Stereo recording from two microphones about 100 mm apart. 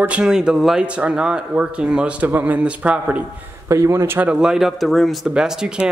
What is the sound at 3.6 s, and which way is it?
Speech, 30° right (ahead or behind).